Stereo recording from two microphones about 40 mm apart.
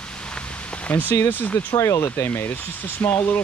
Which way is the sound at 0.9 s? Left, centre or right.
Left.